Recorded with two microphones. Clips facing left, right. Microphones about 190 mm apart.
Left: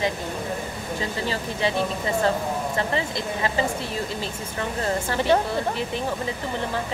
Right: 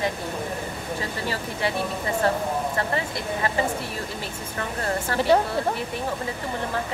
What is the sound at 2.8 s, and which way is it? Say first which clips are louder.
Speech: left 1 dB; 20° left (ahead or behind).